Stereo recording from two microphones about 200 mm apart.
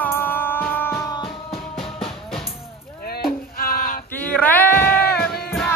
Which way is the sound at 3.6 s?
45° left (ahead or behind).